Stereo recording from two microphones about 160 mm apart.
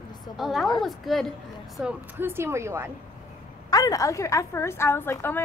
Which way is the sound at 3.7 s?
20° left (ahead or behind).